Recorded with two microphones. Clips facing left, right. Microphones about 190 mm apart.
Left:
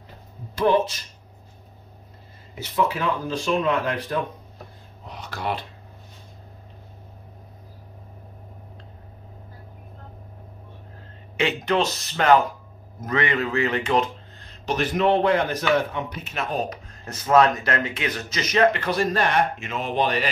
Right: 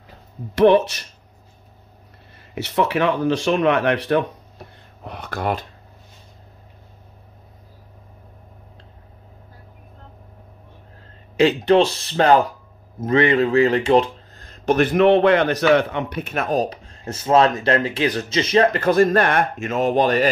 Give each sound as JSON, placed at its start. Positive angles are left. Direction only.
{"t": 0.6, "sound": "speech", "side_deg": -70}
{"t": 2.5, "sound": "speech", "side_deg": -70}
{"t": 5.0, "sound": "speech", "side_deg": -55}
{"t": 11.3, "sound": "speech", "side_deg": -35}
{"t": 14.4, "sound": "a man's voice", "side_deg": -50}
{"t": 16.6, "sound": "speech", "side_deg": -30}
{"t": 18.8, "sound": "speech", "side_deg": -50}